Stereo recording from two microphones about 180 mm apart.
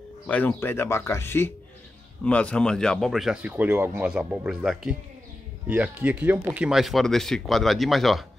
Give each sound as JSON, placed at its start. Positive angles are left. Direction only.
{"t": 0.3, "sound": "speech", "side_deg": 10}